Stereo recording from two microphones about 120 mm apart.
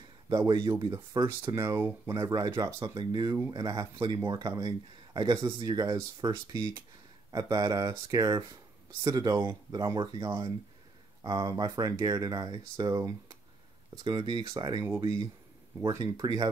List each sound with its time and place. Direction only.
0.3 s speech: 30° right (ahead or behind)
16.0 s speech: 35° right (ahead or behind)